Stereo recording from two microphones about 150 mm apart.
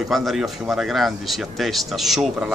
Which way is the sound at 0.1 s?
Centre (ahead or behind).